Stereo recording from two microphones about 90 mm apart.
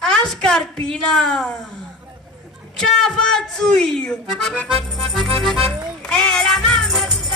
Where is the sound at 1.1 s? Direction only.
5° left (ahead or behind).